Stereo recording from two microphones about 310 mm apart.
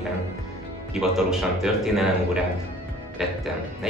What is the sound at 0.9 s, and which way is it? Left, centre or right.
A man's voice, centre.